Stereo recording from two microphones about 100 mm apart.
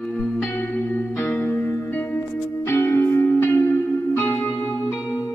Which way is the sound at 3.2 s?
20° left (ahead or behind).